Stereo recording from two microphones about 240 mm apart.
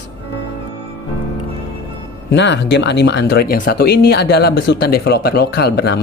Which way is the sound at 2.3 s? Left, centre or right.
Left.